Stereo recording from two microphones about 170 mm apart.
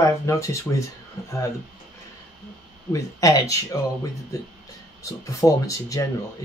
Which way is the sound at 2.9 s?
20° left (ahead or behind).